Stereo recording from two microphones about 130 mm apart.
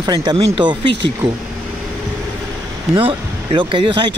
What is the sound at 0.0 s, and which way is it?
Speech, 30° right (ahead or behind).